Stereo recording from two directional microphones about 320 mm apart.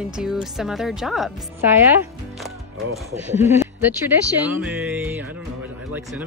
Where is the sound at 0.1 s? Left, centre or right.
Centre.